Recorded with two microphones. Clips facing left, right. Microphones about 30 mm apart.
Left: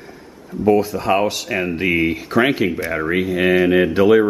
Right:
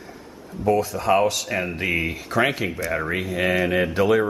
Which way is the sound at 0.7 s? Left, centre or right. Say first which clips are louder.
Left 4 dB; centre.